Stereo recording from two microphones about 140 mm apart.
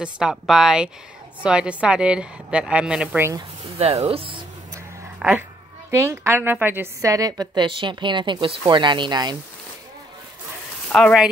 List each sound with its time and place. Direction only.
0.0 s a woman's voice: 5° right (ahead or behind)
3.7 s speech: 45° right (ahead or behind)
5.2 s speech: 5° right (ahead or behind)
5.9 s a woman's voice: 20° right (ahead or behind)
10.9 s speech: 10° left (ahead or behind)